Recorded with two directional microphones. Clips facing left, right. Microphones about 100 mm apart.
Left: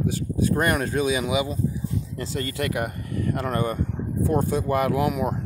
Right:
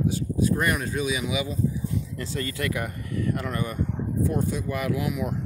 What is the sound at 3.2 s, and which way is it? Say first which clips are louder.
Speech: left 3 dB; 35° left (ahead or behind).